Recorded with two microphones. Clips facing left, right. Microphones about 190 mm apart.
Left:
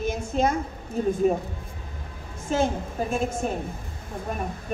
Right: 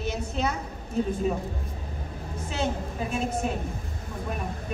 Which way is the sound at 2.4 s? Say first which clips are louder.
Left 6 dB; 45° left (ahead or behind).